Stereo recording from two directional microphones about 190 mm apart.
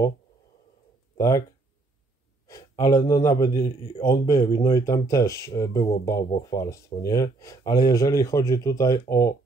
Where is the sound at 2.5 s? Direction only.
20° left (ahead or behind).